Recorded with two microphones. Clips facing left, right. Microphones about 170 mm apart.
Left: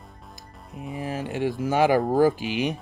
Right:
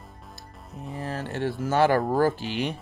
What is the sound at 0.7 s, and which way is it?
Speech, 15° left (ahead or behind).